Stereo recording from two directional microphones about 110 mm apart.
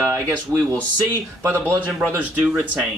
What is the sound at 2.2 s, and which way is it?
Speech, 5° right (ahead or behind).